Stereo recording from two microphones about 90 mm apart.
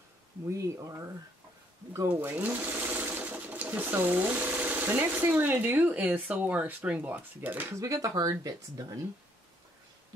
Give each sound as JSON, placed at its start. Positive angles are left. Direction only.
{"t": 0.5, "sound": "speech", "side_deg": -35}
{"t": 2.3, "sound": "speech", "side_deg": -20}
{"t": 7.7, "sound": "speech", "side_deg": -35}